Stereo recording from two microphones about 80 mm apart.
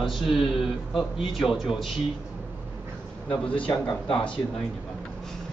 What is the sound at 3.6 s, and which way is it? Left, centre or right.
Speech, left.